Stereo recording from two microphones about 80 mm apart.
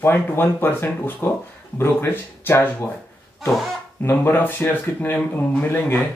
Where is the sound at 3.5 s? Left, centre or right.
Centre.